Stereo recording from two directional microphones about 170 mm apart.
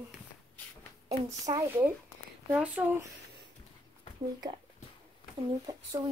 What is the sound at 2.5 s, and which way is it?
Speech, 10° right (ahead or behind).